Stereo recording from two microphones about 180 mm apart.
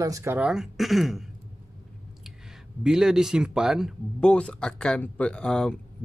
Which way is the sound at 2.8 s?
5° right (ahead or behind).